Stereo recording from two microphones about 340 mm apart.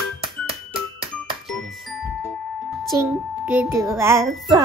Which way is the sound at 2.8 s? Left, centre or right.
Centre.